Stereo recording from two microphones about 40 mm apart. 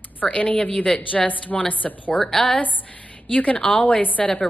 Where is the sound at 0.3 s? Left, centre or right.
Left.